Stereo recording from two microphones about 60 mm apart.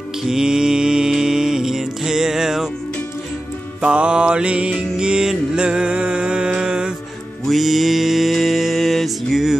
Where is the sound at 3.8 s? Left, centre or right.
Centre.